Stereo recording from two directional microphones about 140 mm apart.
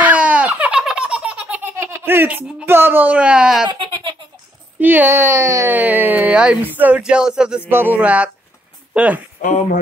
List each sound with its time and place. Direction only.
0.0 s giggle: 10° right (ahead or behind)
3.6 s giggle: 35° right (ahead or behind)
4.7 s speech: 15° right (ahead or behind)
9.4 s speech: 65° left (ahead or behind)